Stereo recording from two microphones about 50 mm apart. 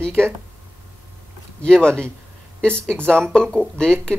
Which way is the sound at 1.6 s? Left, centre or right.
Centre.